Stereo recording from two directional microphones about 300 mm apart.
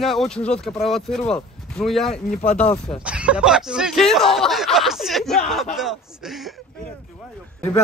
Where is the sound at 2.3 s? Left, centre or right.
Left.